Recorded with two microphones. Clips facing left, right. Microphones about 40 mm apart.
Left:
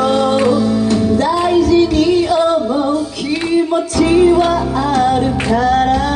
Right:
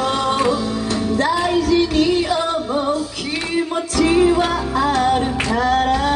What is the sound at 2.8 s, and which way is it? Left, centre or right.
Music, centre.